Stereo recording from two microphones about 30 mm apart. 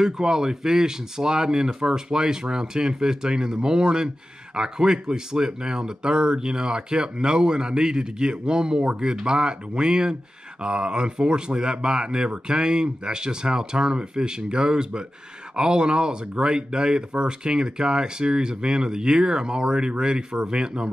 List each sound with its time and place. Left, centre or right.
0.0 s speech: right